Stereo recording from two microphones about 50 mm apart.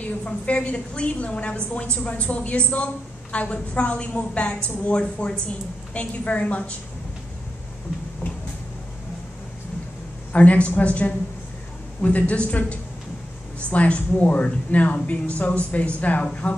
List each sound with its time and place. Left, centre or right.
0.2 s a woman's voice: left
10.3 s a woman's voice: left